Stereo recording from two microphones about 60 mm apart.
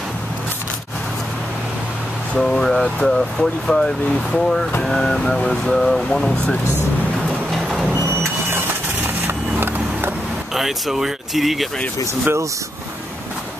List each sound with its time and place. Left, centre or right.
2.3 s speech: centre
7.5 s vehicle: centre
8.1 s vehicle: right
10.5 s speech: centre
12.1 s speech: right